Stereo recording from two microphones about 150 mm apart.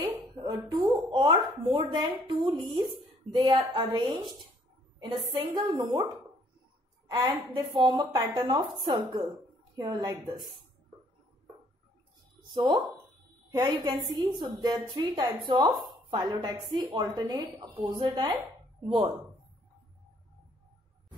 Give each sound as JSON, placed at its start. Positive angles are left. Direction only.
{"t": 0.0, "sound": "speech", "side_deg": -25}
{"t": 5.4, "sound": "speech", "side_deg": -25}
{"t": 7.1, "sound": "a woman's voice", "side_deg": -25}
{"t": 12.5, "sound": "speech", "side_deg": -30}